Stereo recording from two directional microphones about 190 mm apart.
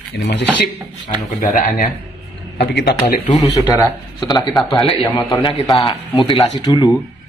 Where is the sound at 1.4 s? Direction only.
45° left (ahead or behind).